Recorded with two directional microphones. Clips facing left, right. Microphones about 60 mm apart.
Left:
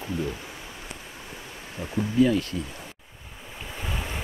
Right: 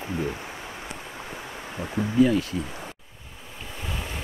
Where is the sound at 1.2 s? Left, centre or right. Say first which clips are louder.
Right 4 dB; right.